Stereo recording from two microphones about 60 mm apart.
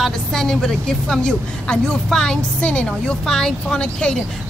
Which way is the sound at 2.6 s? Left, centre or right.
Left.